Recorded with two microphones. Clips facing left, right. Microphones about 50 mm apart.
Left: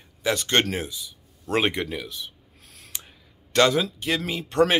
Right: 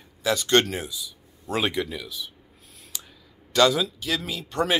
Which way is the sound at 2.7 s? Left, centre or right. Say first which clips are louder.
Left 3 dB; left.